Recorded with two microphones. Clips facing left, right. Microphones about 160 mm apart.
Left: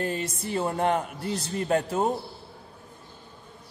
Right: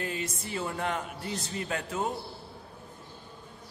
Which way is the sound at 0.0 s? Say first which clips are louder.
Left 5 dB; 40° left (ahead or behind).